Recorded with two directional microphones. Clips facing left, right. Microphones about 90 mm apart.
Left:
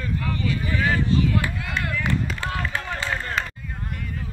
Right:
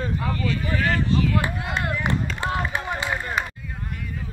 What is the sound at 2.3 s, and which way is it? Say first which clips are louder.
Run: right 2 dB; 25° right (ahead or behind).